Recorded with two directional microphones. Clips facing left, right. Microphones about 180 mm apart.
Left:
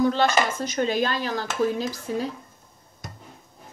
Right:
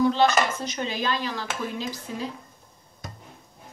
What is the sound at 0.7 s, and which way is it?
Speech, 50° left (ahead or behind).